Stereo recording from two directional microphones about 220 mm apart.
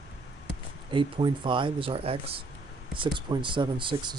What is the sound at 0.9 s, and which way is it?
Speech, 20° right (ahead or behind).